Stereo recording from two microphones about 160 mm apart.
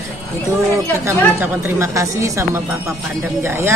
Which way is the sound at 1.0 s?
15° right (ahead or behind).